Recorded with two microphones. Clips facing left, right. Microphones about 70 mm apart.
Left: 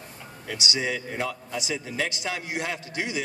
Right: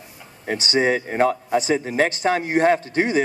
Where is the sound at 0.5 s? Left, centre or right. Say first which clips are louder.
Right 9 dB; right.